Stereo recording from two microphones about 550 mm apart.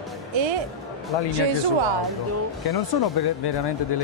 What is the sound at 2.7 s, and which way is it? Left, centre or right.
Speech, left.